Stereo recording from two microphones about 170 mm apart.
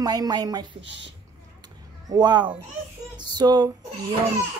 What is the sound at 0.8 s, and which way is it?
Speech, 90° right.